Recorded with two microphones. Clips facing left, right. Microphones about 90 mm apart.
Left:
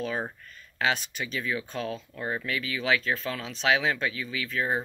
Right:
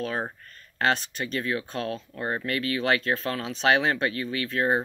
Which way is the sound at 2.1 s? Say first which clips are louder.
Right 2 dB; 5° right (ahead or behind).